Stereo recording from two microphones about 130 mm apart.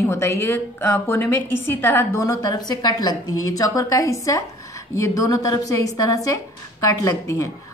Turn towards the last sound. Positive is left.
turn(degrees=25)  # may be behind; listen again after turning